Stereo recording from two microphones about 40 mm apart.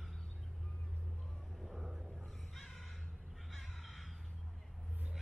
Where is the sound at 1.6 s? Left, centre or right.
Centre.